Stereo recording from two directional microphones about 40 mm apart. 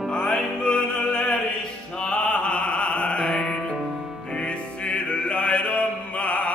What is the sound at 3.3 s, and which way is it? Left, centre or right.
Music, centre.